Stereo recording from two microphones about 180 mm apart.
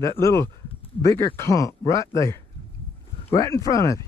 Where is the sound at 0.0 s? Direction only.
15° left (ahead or behind).